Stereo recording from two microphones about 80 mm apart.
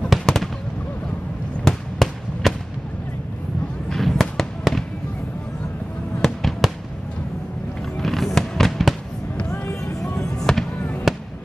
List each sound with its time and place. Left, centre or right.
0.1 s fireworks: centre
1.6 s fireworks: centre
3.9 s fireworks: centre
6.2 s fireworks: centre
8.0 s fireworks: centre
9.5 s vehicle: left
10.2 s fireworks: centre
10.8 s fireworks: left